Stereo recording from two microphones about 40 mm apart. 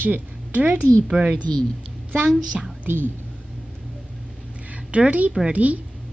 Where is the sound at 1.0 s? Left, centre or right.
Right.